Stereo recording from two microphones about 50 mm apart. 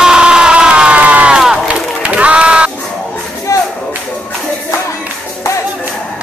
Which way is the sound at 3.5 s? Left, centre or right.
Left.